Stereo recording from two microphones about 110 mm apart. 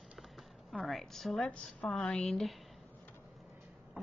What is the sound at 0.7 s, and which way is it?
A woman's voice, centre (ahead or behind).